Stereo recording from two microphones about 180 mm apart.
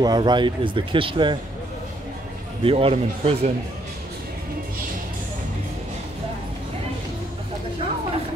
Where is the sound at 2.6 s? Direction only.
30° right (ahead or behind).